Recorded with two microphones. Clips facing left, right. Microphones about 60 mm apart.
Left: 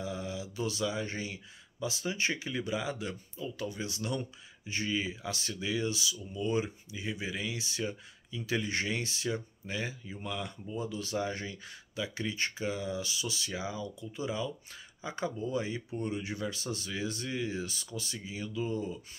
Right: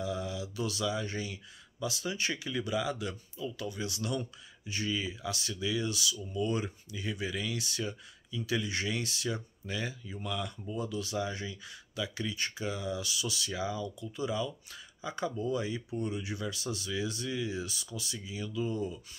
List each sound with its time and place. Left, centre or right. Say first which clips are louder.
0.0 s speech: right 2 dB; left